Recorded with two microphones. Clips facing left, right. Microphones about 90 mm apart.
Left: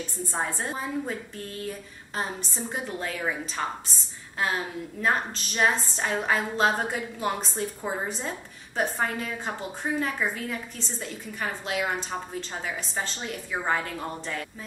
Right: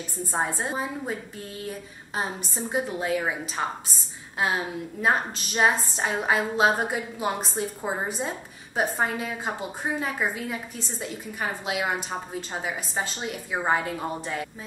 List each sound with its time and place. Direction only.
0.3 s a woman's voice: 20° right (ahead or behind)
2.1 s a woman's voice: 15° right (ahead or behind)
5.0 s a woman's voice: 15° right (ahead or behind)